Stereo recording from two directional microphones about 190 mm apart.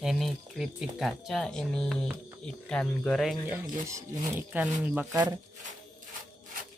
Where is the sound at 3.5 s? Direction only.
15° right (ahead or behind).